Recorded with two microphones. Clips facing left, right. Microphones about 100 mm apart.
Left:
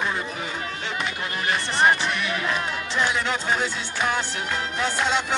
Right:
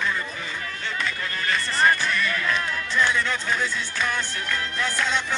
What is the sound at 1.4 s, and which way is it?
Music, 20° left (ahead or behind).